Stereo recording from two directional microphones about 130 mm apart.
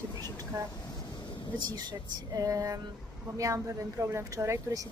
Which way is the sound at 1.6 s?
30° right (ahead or behind).